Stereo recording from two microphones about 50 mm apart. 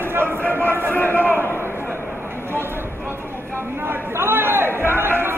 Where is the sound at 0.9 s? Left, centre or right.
Left.